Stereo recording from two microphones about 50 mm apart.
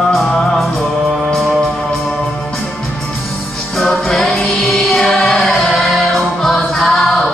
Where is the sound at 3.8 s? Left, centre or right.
Centre.